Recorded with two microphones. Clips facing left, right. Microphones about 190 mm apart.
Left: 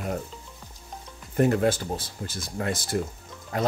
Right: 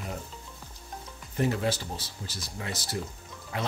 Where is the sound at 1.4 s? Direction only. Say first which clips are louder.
Left 6 dB; 50° left (ahead or behind).